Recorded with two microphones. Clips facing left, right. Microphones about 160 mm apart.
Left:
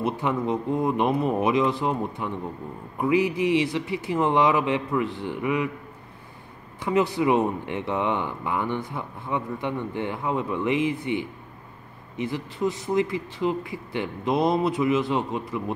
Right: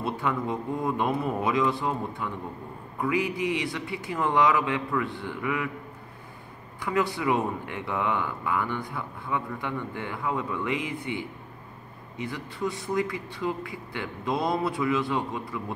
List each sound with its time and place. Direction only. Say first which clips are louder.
0.0 s speech: left 3 dB; 20° left (ahead or behind)
6.8 s speech: left 5 dB; 20° left (ahead or behind)